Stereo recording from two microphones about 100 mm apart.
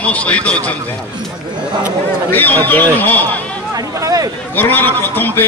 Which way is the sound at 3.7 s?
35° right (ahead or behind).